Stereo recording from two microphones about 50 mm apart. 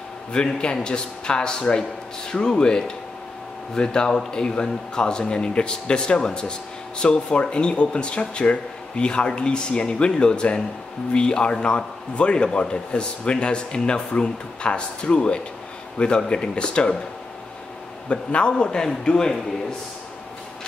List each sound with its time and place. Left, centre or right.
0.3 s a man's voice: centre
18.0 s a man's voice: left